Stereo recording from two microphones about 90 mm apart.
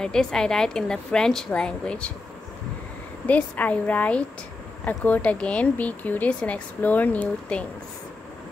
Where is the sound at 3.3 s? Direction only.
15° left (ahead or behind).